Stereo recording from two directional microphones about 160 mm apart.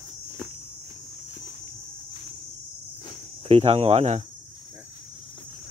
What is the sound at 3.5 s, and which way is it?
Speech, 40° right (ahead or behind).